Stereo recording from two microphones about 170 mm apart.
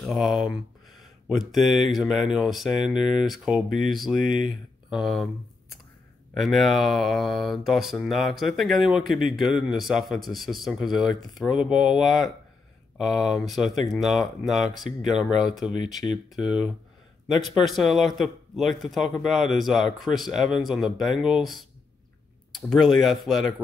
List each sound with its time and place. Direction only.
0.0 s speech: centre (ahead or behind)
4.2 s speech: 50° right (ahead or behind)
4.8 s a sound: centre (ahead or behind)
6.3 s speech: centre (ahead or behind)
14.9 s speech: 45° right (ahead or behind)
15.1 s speech: 5° right (ahead or behind)